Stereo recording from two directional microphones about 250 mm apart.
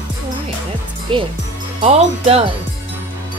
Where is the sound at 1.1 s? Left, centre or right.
Centre.